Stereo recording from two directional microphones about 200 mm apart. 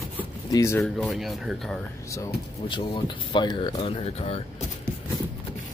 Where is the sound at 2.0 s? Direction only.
15° left (ahead or behind); by 4.4 s 30° left (ahead or behind).